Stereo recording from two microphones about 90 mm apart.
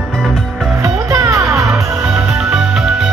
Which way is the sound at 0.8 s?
35° right (ahead or behind).